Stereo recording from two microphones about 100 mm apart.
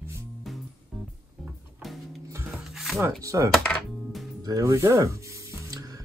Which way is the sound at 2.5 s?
Centre (ahead or behind).